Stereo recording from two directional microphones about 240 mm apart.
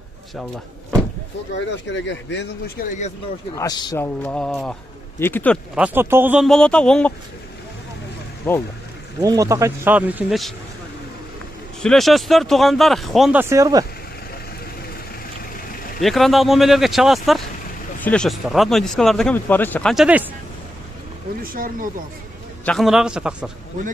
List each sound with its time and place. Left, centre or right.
1.9 s a man's voice: left
3.5 s a man's voice: centre
5.8 s speech: centre
8.5 s a man's voice: centre
9.2 s speech: centre
11.8 s speech: centre
16.0 s speech: centre
21.4 s speech: right
22.7 s speech: centre